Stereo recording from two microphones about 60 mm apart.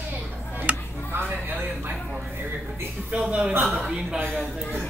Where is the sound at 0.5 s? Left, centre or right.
Right.